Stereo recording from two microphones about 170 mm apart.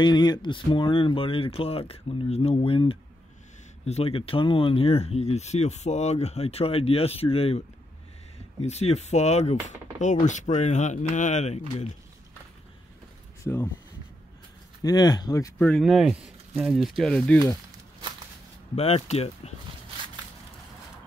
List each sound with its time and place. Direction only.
0.0 s speech: 25° left (ahead or behind); by 11.6 s 40° left (ahead or behind)
13.4 s speech: 15° left (ahead or behind)
14.8 s speech: 25° left (ahead or behind)
15.6 s speech: 5° left (ahead or behind)
18.8 s speech: 35° left (ahead or behind)